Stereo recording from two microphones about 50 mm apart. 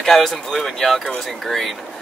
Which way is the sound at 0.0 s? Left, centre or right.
Centre.